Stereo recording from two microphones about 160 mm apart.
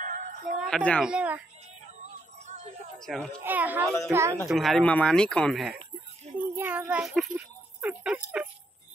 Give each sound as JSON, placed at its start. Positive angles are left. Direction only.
{"t": 0.0, "sound": "a sound", "side_deg": -55}
{"t": 0.6, "sound": "speech", "side_deg": 5}
{"t": 1.0, "sound": "speech", "side_deg": -5}
{"t": 2.4, "sound": "a sound", "side_deg": -45}
{"t": 3.0, "sound": "speech", "side_deg": 5}
{"t": 3.4, "sound": "speech", "side_deg": -10}
{"t": 3.8, "sound": "speech", "side_deg": 0}
{"t": 4.1, "sound": "speech", "side_deg": -15}
{"t": 4.5, "sound": "speech", "side_deg": 0}
{"t": 6.4, "sound": "speech", "side_deg": -10}